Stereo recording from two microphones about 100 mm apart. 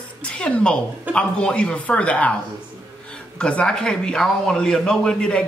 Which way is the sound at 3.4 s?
10° left (ahead or behind).